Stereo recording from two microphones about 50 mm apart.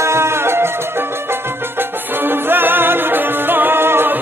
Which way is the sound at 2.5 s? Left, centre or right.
Right.